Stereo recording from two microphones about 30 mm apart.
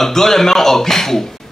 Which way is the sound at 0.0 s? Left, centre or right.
Centre.